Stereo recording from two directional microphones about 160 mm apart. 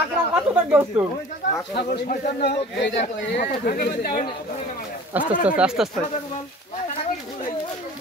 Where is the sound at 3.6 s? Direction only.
70° left (ahead or behind).